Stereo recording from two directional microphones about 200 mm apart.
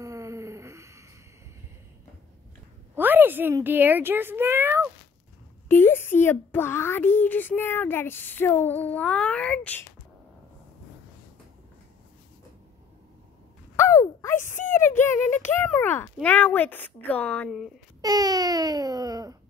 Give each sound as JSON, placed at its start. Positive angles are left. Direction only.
{"t": 0.0, "sound": "a sound", "side_deg": -15}
{"t": 3.0, "sound": "a child's voice", "side_deg": -10}
{"t": 5.7, "sound": "a child's voice", "side_deg": 10}
{"t": 13.7, "sound": "a sound", "side_deg": 15}
{"t": 14.7, "sound": "a child's voice", "side_deg": 10}
{"t": 18.0, "sound": "baby cry", "side_deg": -20}